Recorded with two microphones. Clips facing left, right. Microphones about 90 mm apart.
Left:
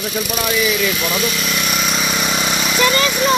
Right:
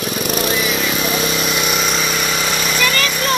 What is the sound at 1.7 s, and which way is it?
Vehicle, centre (ahead or behind).